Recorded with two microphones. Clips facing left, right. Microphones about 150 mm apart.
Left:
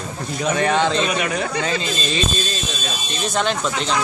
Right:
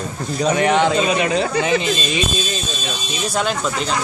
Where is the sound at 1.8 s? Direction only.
15° right (ahead or behind).